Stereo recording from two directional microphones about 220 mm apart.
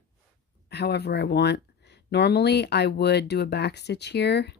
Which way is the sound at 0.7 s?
50° left (ahead or behind).